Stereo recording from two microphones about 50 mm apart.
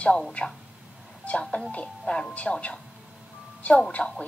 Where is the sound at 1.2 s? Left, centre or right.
Left.